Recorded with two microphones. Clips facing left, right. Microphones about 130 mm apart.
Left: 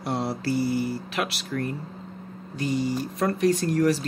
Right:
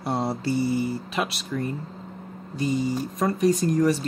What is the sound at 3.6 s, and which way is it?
Speech, 10° right (ahead or behind).